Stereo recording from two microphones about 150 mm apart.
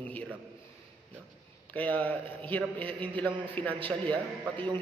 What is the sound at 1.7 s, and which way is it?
A man's voice, 10° left (ahead or behind).